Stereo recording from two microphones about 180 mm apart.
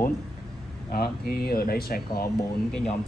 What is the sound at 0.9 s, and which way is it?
Speech, 55° left (ahead or behind).